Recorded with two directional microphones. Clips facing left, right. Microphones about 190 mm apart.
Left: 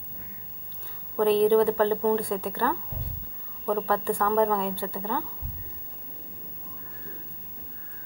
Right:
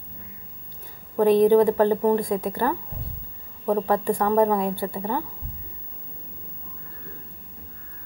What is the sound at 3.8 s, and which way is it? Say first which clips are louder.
A woman's voice: right 4 dB; 20° right (ahead or behind).